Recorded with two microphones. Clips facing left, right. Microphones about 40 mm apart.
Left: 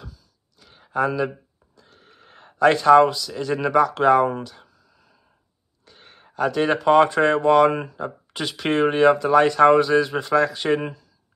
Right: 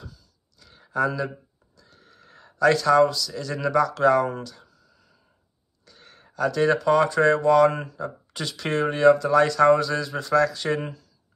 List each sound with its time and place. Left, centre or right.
0.6 s a sound: centre
0.8 s speech: left
4.4 s a sound: left
5.9 s speech: left
8.8 s speech: left
10.8 s speech: centre